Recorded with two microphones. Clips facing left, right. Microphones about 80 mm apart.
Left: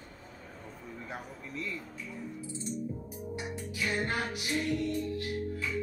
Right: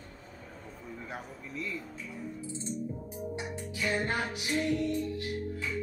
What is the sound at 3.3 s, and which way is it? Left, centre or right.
Music, right.